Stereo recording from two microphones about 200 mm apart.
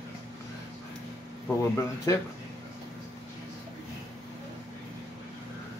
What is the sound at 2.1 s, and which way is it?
Speech, 15° left (ahead or behind).